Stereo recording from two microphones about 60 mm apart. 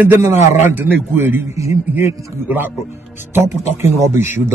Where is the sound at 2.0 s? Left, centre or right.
Right.